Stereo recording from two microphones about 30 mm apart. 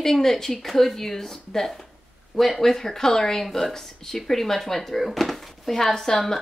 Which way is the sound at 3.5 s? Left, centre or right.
Centre.